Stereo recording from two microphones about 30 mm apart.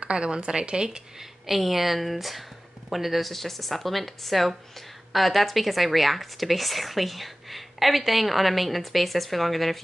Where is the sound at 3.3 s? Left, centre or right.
Centre.